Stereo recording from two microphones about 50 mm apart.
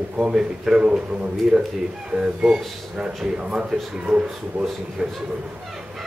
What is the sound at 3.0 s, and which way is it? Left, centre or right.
Speech, centre.